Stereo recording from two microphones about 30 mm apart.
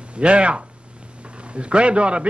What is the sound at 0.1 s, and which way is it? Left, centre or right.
A man's voice, right.